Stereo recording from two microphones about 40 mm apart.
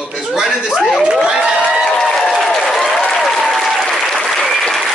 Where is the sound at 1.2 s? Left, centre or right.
Right.